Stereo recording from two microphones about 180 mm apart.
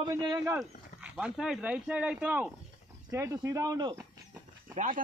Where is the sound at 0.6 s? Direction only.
5° right (ahead or behind); by 4.0 s 20° right (ahead or behind).